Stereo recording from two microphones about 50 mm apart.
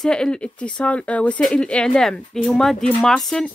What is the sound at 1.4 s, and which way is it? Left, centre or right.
Speech, centre.